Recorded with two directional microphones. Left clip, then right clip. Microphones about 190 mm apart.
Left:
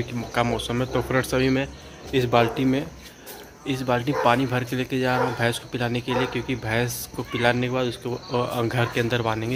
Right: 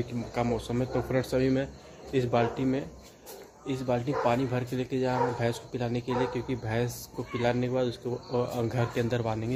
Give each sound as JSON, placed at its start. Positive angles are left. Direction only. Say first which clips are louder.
{"t": 0.3, "sound": "speech", "louder": "left 7 dB", "side_deg": 0}
{"t": 2.1, "sound": "speech", "louder": "left 7 dB", "side_deg": 15}
{"t": 3.6, "sound": "speech", "louder": "left 6 dB", "side_deg": 5}